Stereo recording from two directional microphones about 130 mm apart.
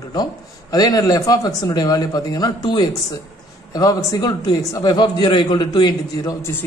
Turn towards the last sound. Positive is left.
turn(degrees=35)  # may be behind; listen again after turning